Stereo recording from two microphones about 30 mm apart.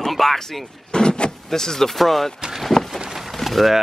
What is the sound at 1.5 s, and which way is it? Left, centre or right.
Speech, centre.